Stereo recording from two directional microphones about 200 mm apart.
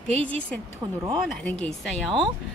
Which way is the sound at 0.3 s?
5° left (ahead or behind).